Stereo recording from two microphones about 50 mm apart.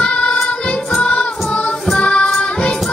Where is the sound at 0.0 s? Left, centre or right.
Left.